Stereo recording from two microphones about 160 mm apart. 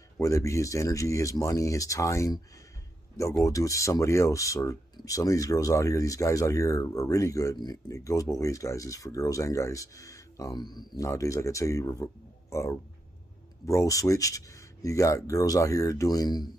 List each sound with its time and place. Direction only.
0.2 s speech: 20° left (ahead or behind)